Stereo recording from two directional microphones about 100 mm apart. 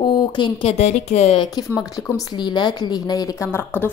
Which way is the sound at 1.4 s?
40° left (ahead or behind).